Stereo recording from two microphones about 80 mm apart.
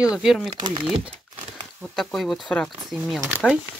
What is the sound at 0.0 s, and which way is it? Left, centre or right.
Speech, centre.